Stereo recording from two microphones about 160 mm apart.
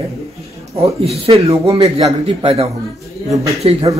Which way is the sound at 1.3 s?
35° right (ahead or behind).